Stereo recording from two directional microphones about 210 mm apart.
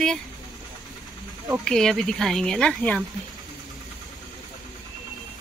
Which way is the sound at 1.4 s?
5° left (ahead or behind).